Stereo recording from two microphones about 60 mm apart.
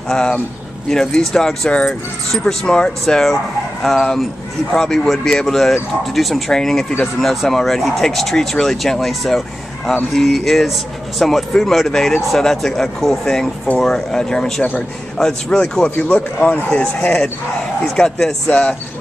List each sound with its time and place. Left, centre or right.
0.1 s speech: centre
17.9 s speech: centre